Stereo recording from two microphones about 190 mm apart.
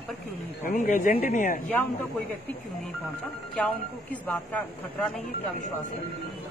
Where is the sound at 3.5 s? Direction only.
5° left (ahead or behind).